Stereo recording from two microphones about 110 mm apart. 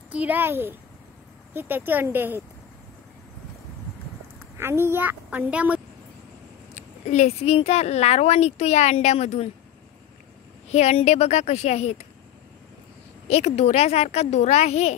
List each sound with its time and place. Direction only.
0.1 s a child's voice: 15° right (ahead or behind)
4.6 s a child's voice: 20° right (ahead or behind)
6.7 s speech: 90° left
10.7 s speech: 80° left
13.3 s a child's voice: 75° left (ahead or behind)